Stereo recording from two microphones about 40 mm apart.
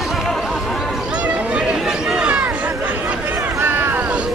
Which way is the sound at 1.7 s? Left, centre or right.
Centre.